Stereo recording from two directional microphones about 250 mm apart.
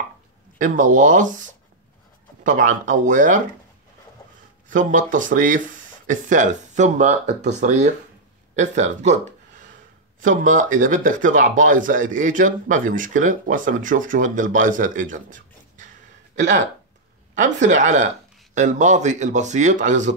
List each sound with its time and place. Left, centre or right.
0.6 s speech: right
4.6 s speech: right
10.2 s speech: right
17.4 s speech: right